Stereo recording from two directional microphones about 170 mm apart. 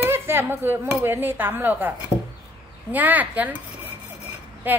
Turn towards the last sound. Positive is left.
turn(degrees=-10)  # may be behind; listen again after turning